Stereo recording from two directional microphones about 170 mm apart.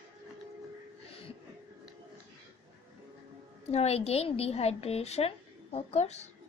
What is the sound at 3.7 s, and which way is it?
A woman's voice, 40° left (ahead or behind).